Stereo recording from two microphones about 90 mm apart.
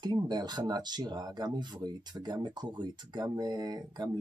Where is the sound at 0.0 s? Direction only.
50° right (ahead or behind).